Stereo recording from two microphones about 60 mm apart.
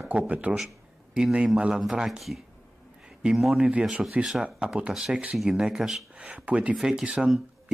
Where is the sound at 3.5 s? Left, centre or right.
Centre.